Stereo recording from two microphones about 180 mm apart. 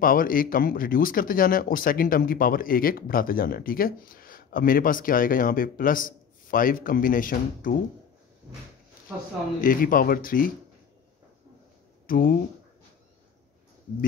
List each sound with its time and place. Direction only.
0.0 s speech: 50° left (ahead or behind)
9.6 s speech: 50° left (ahead or behind)
12.1 s speech: 50° left (ahead or behind)